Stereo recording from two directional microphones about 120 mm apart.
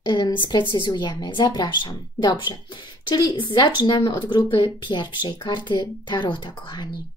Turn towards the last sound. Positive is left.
turn(degrees=35)  # may be behind; listen again after turning